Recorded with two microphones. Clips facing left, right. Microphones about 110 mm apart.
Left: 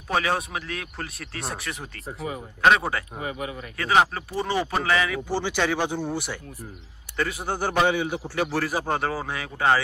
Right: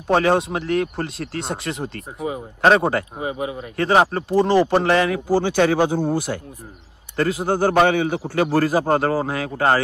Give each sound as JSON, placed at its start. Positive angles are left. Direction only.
{"t": 0.1, "sound": "speech", "side_deg": -35}
{"t": 2.6, "sound": "speech", "side_deg": -35}
{"t": 3.2, "sound": "speech", "side_deg": -25}
{"t": 5.3, "sound": "a man's voice", "side_deg": -50}
{"t": 7.2, "sound": "a man's voice", "side_deg": -50}